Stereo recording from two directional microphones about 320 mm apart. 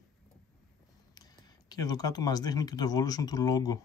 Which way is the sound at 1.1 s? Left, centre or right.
Centre.